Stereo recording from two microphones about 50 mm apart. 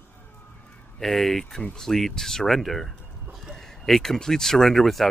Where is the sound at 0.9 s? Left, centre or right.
Centre.